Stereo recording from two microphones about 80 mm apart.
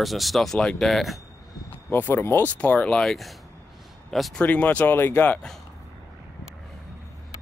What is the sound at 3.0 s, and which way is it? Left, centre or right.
Speech, centre.